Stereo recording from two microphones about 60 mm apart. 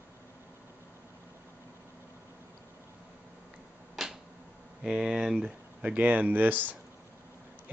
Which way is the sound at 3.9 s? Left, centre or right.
Centre.